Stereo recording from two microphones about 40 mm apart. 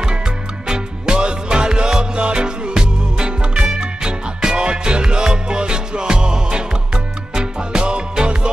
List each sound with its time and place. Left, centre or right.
0.7 s music: right